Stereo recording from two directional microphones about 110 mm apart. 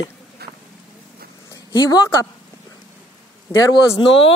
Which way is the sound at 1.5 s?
30° left (ahead or behind).